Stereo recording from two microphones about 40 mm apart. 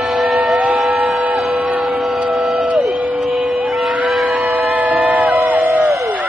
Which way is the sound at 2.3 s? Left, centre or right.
Centre.